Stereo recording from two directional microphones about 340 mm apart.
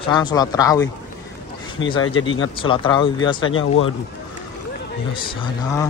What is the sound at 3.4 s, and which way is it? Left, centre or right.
Speech, left.